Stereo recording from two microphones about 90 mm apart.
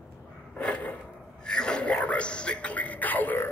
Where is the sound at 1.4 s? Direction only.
10° left (ahead or behind).